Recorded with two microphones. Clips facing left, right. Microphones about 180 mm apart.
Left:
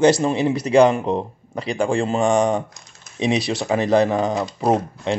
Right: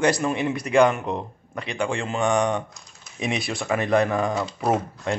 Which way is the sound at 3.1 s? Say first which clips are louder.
Left 6 dB; 30° left (ahead or behind).